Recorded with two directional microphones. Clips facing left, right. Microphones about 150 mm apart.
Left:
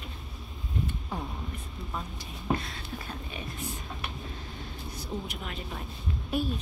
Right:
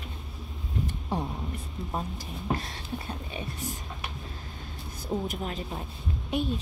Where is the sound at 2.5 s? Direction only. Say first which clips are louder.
Left 1 dB; 35° right (ahead or behind).